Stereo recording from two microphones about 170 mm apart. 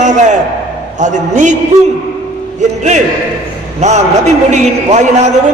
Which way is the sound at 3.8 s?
40° right (ahead or behind).